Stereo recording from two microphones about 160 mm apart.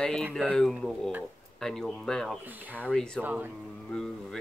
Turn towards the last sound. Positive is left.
turn(degrees=0)  # may be behind; listen again after turning